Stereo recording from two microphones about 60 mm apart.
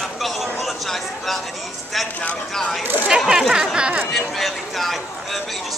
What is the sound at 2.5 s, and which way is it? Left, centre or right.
Speech, centre.